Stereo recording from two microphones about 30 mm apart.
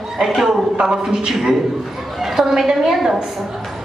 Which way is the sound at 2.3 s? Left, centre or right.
Centre.